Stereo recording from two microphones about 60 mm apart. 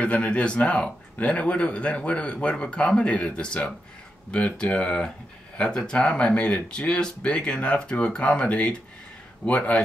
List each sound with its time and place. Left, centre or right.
0.0 s a man's voice: left